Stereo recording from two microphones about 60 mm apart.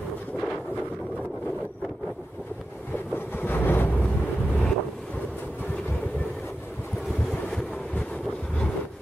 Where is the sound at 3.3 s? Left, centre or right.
Left.